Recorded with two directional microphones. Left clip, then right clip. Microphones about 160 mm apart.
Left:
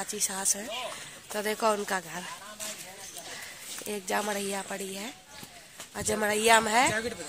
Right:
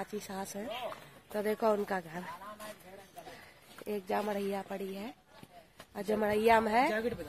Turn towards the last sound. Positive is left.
turn(degrees=5)  # may be behind; listen again after turning